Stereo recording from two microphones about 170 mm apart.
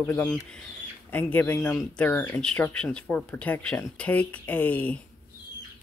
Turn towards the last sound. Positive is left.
turn(degrees=10)  # may be behind; listen again after turning